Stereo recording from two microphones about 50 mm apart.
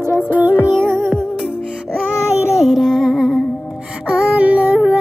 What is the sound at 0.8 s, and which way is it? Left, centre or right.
Music, right.